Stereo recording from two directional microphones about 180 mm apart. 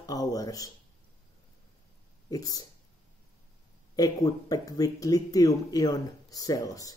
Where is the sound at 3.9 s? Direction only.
20° left (ahead or behind).